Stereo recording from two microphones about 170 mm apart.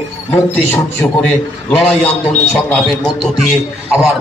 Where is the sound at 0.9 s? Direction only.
5° left (ahead or behind).